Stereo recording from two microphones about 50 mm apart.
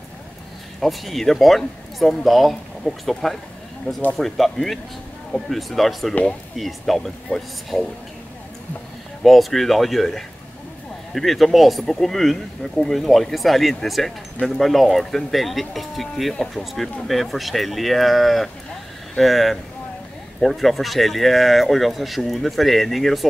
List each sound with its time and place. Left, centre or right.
0.7 s speech: centre
3.9 s speech: left
4.2 s speech: centre
9.2 s speech: centre